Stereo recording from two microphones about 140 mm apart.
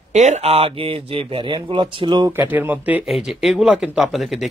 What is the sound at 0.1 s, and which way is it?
Speech, 55° right (ahead or behind).